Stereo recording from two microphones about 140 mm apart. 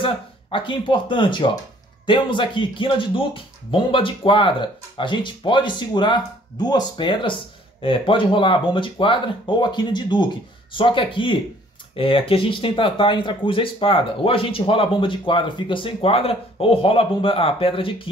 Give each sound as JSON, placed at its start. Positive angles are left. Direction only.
{"t": 0.0, "sound": "speech", "side_deg": 35}